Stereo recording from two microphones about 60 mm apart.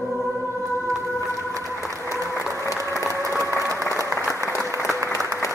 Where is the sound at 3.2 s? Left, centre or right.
Right.